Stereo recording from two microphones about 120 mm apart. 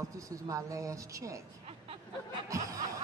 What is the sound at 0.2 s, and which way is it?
A man's voice, 30° right (ahead or behind).